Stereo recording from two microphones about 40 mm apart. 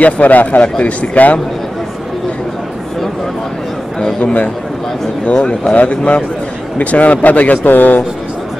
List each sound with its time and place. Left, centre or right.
0.0 s speech: left
4.2 s speech: left
5.2 s speech: left